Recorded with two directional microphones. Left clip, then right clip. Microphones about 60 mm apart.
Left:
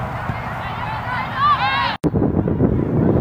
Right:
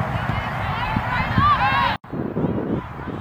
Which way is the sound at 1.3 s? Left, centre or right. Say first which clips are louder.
Left 1 dB; left.